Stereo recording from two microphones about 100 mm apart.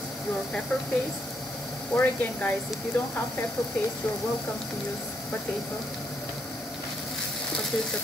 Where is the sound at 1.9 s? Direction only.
20° left (ahead or behind).